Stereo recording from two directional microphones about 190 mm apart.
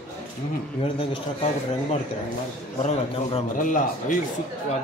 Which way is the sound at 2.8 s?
35° left (ahead or behind).